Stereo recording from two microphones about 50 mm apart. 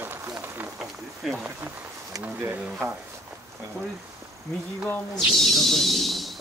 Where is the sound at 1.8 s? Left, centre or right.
Right.